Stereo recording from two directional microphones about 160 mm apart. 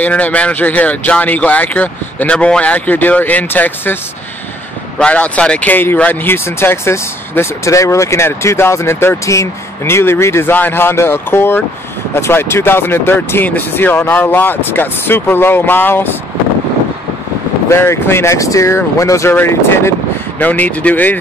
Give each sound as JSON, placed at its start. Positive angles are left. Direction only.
{"t": 0.0, "sound": "speech", "side_deg": 10}
{"t": 17.6, "sound": "speech", "side_deg": 15}